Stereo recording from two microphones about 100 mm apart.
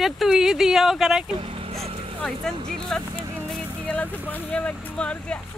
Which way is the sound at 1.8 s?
70° right (ahead or behind).